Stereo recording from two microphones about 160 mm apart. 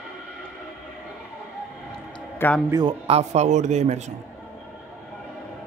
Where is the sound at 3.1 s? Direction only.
45° right (ahead or behind).